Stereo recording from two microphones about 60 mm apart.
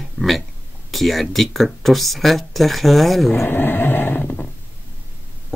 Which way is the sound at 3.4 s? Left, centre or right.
Left.